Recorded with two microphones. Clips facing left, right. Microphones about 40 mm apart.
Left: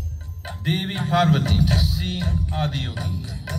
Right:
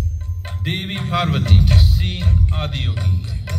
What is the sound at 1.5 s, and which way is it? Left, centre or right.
Speech, right.